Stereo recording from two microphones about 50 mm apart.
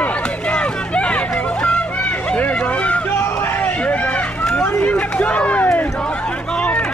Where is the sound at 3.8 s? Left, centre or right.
Left.